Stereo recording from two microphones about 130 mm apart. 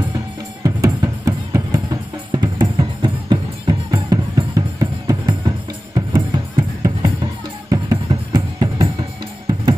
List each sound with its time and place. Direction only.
0.7 s music: 25° right (ahead or behind)